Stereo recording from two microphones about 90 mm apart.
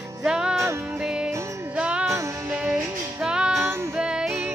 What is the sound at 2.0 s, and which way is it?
Music, 30° right (ahead or behind).